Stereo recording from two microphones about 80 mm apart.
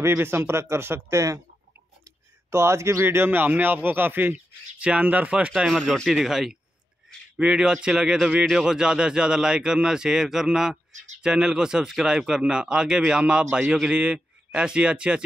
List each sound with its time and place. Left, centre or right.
0.0 s speech: right
2.5 s a man's voice: right; by 5.5 s centre
5.9 s a man's voice: centre